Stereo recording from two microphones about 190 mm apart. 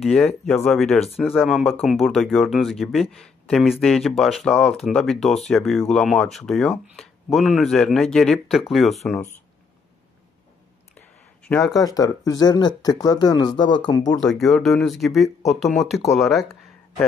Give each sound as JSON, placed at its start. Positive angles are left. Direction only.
{"t": 0.0, "sound": "speech", "side_deg": 0}
{"t": 11.4, "sound": "speech", "side_deg": 5}
{"t": 11.7, "sound": "speech", "side_deg": 20}
{"t": 14.2, "sound": "speech", "side_deg": 0}